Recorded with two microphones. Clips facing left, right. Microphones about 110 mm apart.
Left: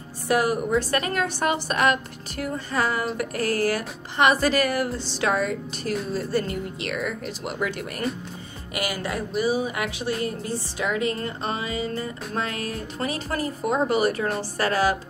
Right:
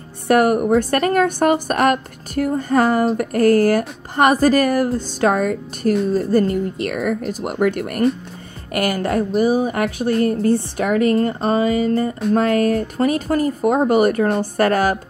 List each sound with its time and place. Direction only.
0.3 s a woman's voice: 55° right (ahead or behind)